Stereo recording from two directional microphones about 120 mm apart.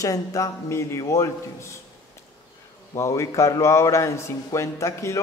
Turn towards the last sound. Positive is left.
turn(degrees=25)  # may be behind; listen again after turning